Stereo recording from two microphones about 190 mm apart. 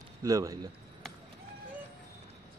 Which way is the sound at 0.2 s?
20° right (ahead or behind).